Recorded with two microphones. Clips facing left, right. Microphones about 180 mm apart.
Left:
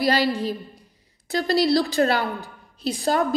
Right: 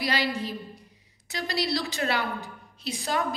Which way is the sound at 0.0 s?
40° left (ahead or behind).